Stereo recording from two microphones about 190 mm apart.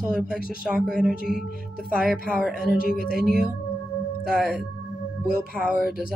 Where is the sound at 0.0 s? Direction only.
5° right (ahead or behind).